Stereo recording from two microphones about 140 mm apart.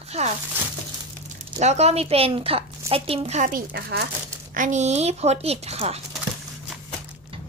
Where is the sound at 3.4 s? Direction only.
85° right.